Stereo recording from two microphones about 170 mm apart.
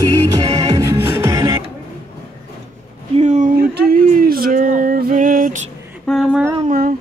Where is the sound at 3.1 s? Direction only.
45° right (ahead or behind).